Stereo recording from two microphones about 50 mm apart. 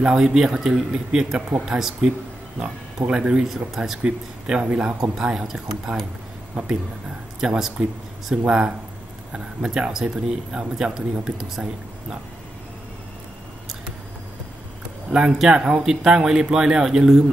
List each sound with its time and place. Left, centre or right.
0.0 s speech: centre
3.4 s speech: centre
4.0 s speech: centre
7.3 s speech: centre
15.0 s speech: centre